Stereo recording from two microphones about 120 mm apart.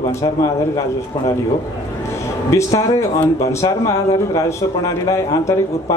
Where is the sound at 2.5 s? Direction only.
25° left (ahead or behind).